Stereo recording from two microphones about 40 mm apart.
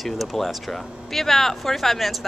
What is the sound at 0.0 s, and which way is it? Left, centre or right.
Speech, centre.